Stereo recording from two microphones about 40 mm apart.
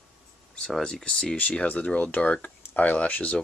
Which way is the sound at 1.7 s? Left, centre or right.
Left.